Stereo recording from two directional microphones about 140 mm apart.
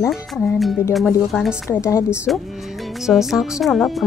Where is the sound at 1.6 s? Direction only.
20° left (ahead or behind).